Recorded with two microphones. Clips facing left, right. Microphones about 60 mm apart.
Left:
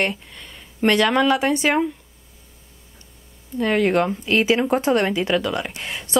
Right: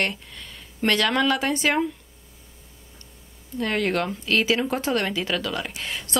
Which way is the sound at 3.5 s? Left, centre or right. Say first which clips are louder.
Left 6 dB; centre.